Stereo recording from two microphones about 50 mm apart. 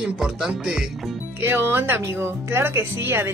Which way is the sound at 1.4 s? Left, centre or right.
Right.